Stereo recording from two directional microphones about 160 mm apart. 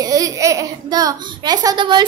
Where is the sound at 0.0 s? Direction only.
20° right (ahead or behind).